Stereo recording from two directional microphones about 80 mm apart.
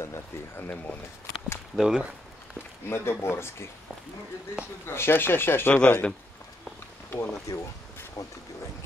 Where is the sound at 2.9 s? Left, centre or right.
Left.